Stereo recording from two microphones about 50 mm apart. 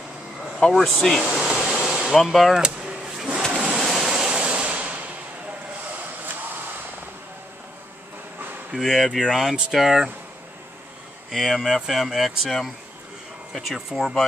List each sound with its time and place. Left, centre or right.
0.7 s speech: centre
1.4 s a sound: centre
2.0 s speech: centre
2.5 s a sound: centre
3.5 s waves: centre
4.3 s a sound: right
8.7 s speech: centre
9.5 s speech: centre
11.2 s speech: centre